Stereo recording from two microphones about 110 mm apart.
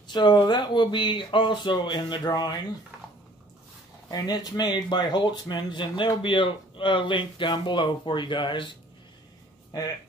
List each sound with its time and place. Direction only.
0.1 s speech: 40° left (ahead or behind)
4.1 s speech: 35° left (ahead or behind)
9.7 s speech: 35° left (ahead or behind)